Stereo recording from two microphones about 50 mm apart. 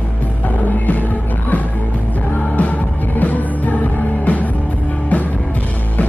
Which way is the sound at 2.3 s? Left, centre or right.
Left.